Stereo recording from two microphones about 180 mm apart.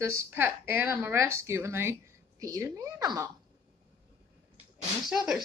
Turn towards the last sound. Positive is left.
turn(degrees=0)  # may be behind; listen again after turning